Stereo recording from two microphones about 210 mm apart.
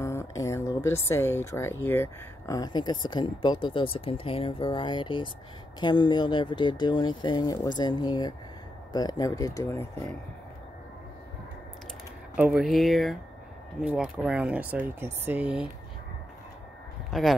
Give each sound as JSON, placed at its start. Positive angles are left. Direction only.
{"t": 0.0, "sound": "speech", "side_deg": 15}
{"t": 12.4, "sound": "speech", "side_deg": -5}
{"t": 17.1, "sound": "speech", "side_deg": 0}